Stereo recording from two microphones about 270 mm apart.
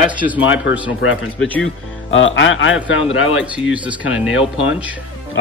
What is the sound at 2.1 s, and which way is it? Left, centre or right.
A man's voice, left.